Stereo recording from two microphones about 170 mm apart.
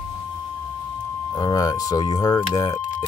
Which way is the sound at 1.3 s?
20° left (ahead or behind).